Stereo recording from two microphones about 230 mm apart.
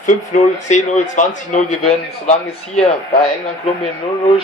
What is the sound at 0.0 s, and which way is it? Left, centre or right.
A man's voice, left.